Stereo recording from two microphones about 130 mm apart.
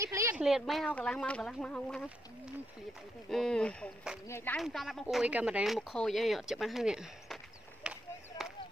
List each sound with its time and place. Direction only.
0.0 s a sound: 20° right (ahead or behind)
0.4 s speech: centre (ahead or behind)
3.3 s speech: 5° left (ahead or behind)
7.8 s chop: 5° right (ahead or behind)